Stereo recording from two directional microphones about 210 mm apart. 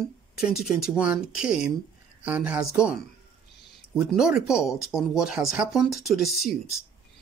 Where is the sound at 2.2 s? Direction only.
5° right (ahead or behind).